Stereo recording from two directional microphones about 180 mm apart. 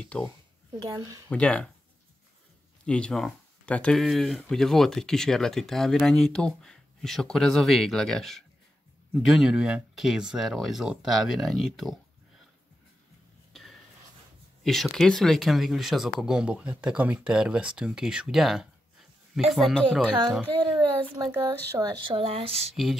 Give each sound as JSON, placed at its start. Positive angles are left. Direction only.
{"t": 0.0, "sound": "speech", "side_deg": 5}
{"t": 0.7, "sound": "speech", "side_deg": -20}
{"t": 1.3, "sound": "speech", "side_deg": 5}
{"t": 2.8, "sound": "speech", "side_deg": 5}
{"t": 13.5, "sound": "a sound", "side_deg": 0}
{"t": 14.6, "sound": "speech", "side_deg": 0}
{"t": 21.3, "sound": "speech", "side_deg": -15}